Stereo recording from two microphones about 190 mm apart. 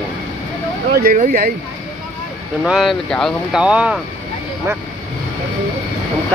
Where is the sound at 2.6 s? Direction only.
Centre (ahead or behind).